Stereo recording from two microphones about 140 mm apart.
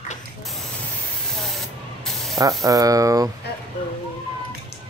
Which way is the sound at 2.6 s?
25° right (ahead or behind).